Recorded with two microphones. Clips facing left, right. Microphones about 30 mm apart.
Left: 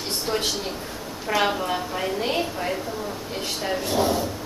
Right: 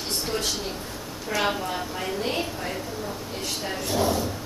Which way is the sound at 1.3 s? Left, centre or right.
Centre.